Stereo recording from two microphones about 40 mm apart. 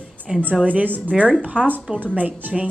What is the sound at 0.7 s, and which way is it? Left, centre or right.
Speech, right.